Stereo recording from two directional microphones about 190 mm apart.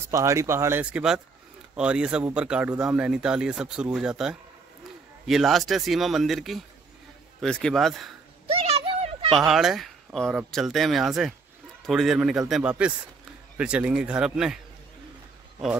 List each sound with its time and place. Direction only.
0.1 s speech: 15° right (ahead or behind)
8.6 s a sound: 30° right (ahead or behind)
9.5 s speech: centre (ahead or behind)